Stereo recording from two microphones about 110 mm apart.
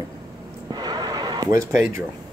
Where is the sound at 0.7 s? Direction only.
40° right (ahead or behind).